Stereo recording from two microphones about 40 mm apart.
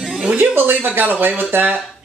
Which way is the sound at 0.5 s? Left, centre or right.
Right.